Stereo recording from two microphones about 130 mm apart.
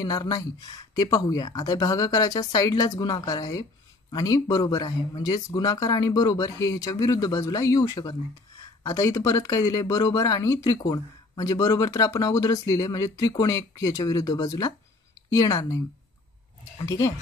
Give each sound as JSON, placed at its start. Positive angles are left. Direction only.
{"t": 0.0, "sound": "speech", "side_deg": 30}
{"t": 16.8, "sound": "speech", "side_deg": 25}